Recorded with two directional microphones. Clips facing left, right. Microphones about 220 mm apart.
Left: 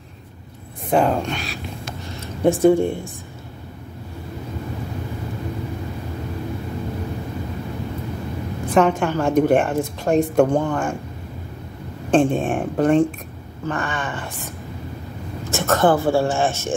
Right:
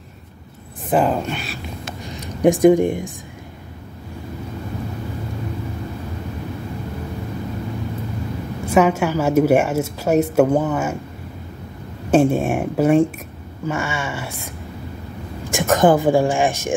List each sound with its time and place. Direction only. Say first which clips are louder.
0.8 s speech: even; centre (ahead or behind)
2.0 s speech: right 3 dB; 15° right (ahead or behind)
8.6 s a woman's voice: right 1 dB; 10° right (ahead or behind)
12.1 s a woman's voice: right 2 dB; 10° right (ahead or behind)
15.5 s a woman's voice: right 2 dB; 15° right (ahead or behind)